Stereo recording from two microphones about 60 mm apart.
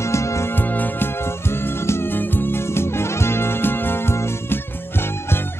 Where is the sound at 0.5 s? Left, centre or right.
Left.